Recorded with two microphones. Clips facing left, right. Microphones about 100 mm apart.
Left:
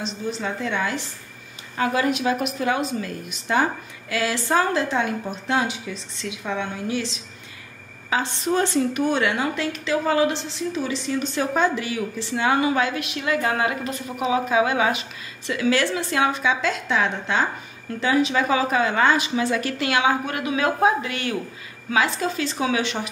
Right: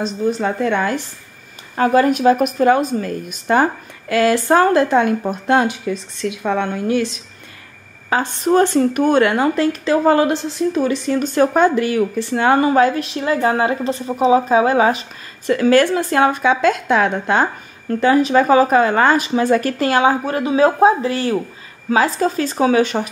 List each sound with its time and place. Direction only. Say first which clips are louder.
0.0 s a woman's voice: right 9 dB; 50° right (ahead or behind)